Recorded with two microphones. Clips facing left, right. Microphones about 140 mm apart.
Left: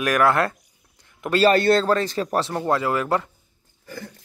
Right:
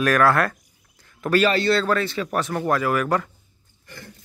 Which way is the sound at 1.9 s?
35° left (ahead or behind).